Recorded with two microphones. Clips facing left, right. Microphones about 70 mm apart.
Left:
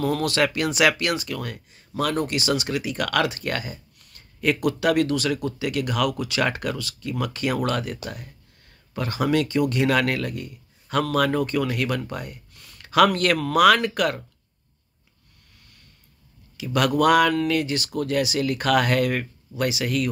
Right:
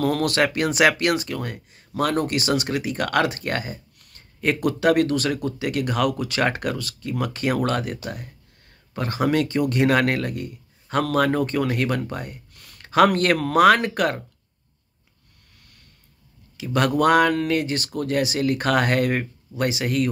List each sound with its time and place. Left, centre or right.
0.0 s speech: right
16.5 s speech: right